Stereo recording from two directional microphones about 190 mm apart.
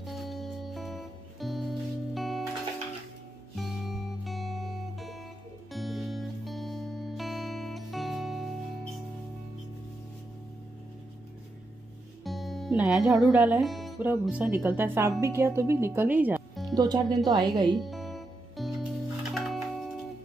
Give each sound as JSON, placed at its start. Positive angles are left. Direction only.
{"t": 0.0, "sound": "music", "side_deg": 0}
{"t": 3.5, "sound": "music", "side_deg": 0}
{"t": 12.2, "sound": "music", "side_deg": 0}
{"t": 14.0, "sound": "speech", "side_deg": -10}
{"t": 16.7, "sound": "speech", "side_deg": -20}
{"t": 17.7, "sound": "music", "side_deg": 0}